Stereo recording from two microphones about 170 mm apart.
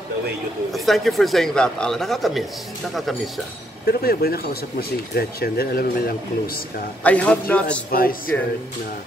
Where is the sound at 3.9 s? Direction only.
65° left (ahead or behind).